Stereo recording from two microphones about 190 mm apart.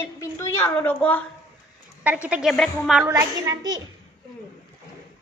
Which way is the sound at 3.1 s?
15° right (ahead or behind).